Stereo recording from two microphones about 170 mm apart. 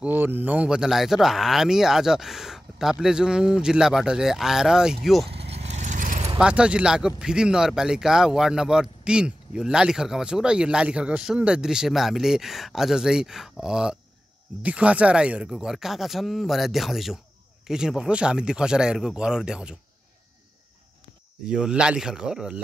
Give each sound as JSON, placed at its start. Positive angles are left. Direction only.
{"t": 0.0, "sound": "speech", "side_deg": -10}
{"t": 5.5, "sound": "vehicle", "side_deg": -40}
{"t": 6.3, "sound": "speech", "side_deg": -5}
{"t": 21.5, "sound": "speech", "side_deg": -5}